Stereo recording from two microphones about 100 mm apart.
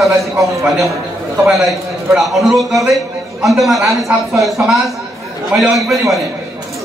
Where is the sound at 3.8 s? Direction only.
30° right (ahead or behind).